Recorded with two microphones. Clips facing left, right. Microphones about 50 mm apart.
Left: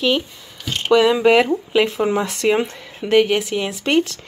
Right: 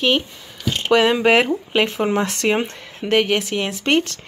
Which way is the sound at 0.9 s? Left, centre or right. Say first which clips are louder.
Left 2 dB; right.